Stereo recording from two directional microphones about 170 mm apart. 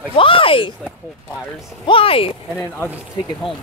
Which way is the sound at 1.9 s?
35° left (ahead or behind).